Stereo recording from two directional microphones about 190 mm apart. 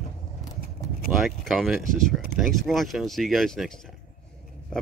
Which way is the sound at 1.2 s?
Centre (ahead or behind).